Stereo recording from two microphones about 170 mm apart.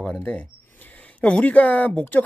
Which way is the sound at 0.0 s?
5° left (ahead or behind).